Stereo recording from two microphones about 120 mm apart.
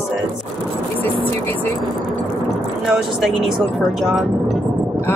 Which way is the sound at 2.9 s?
Centre (ahead or behind).